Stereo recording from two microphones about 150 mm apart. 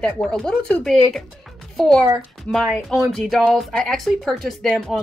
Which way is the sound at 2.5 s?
Centre (ahead or behind).